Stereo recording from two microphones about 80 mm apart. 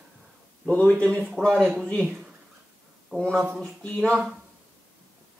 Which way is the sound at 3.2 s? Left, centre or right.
Centre.